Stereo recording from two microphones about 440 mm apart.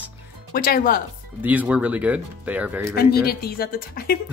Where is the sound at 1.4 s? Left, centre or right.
Centre.